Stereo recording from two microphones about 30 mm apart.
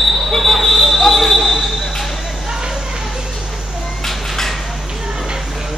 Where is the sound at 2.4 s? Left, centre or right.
Right.